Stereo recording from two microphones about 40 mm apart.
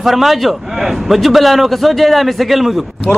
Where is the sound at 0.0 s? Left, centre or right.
Centre.